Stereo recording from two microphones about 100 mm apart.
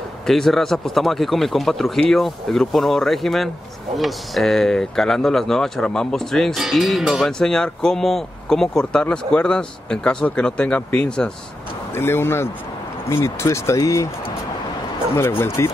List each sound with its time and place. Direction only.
0.3 s speech: 5° left (ahead or behind)
7.3 s speech: 5° left (ahead or behind)
11.9 s speech: 25° left (ahead or behind)
15.1 s speech: 25° left (ahead or behind)